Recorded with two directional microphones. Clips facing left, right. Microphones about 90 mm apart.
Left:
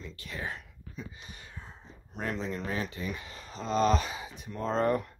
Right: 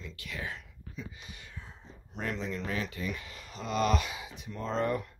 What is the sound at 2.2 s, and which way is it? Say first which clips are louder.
Speech: left 1 dB; 35° left (ahead or behind).